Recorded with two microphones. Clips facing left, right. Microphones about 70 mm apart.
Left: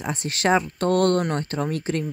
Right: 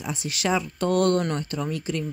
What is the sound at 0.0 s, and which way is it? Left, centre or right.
Speech, left.